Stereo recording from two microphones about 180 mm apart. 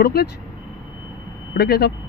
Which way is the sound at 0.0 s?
65° left (ahead or behind).